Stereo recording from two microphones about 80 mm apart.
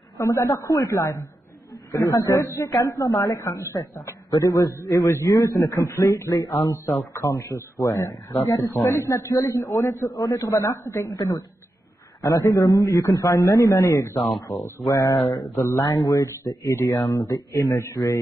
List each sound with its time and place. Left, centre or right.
0.2 s a man's voice: left
8.9 s speech: left
9.2 s a man's voice: left
9.8 s a man's voice: left
10.1 s a man's voice: left
10.6 s speech: left
11.1 s a man's voice: left